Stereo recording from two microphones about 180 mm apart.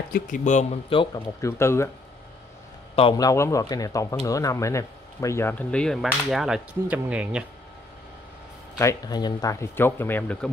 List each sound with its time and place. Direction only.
0.1 s speech: 45° left (ahead or behind); by 1.2 s 30° left (ahead or behind)
1.4 s speech: 15° left (ahead or behind)
3.0 s speech: 25° left (ahead or behind); by 7.4 s 5° right (ahead or behind)
8.7 s speech: 20° left (ahead or behind)